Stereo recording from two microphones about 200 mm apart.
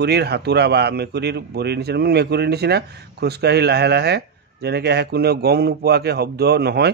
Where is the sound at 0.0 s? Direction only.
55° right (ahead or behind).